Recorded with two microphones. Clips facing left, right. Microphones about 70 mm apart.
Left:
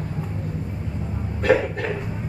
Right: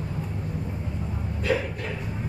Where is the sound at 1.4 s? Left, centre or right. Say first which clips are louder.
Left 8 dB; left.